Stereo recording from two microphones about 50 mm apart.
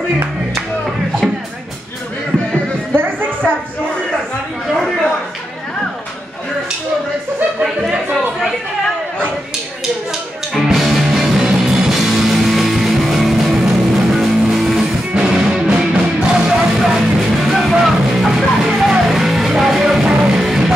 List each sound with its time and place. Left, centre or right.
10.6 s music: centre
15.1 s music: centre
16.8 s music: centre